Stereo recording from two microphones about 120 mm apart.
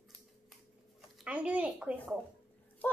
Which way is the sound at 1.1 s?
10° right (ahead or behind).